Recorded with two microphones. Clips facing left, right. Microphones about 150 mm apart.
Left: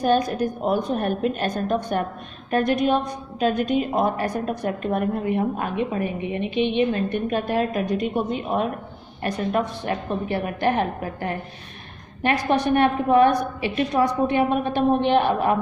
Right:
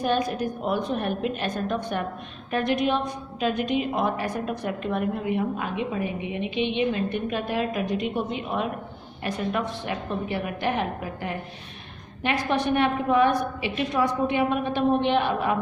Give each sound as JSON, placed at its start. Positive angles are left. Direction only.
{"t": 0.0, "sound": "a woman's voice", "side_deg": 40}